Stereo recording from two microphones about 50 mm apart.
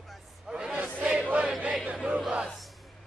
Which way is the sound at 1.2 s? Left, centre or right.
Right.